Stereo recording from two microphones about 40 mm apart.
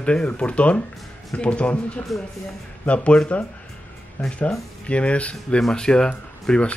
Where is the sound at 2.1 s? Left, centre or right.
Centre.